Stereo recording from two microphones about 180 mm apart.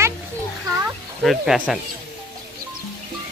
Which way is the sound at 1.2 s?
5° right (ahead or behind).